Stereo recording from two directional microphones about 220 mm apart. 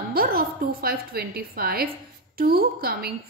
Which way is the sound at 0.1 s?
45° right (ahead or behind).